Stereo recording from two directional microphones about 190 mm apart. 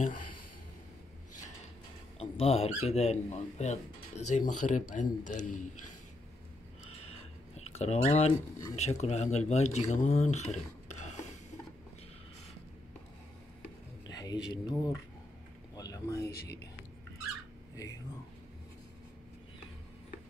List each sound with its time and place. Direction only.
2.1 s speech: 30° left (ahead or behind)
7.1 s a sound: 30° left (ahead or behind)
8.7 s speech: 35° left (ahead or behind)
14.1 s speech: 20° left (ahead or behind)
15.7 s a sound: 20° left (ahead or behind)
16.3 s speech: 55° left (ahead or behind)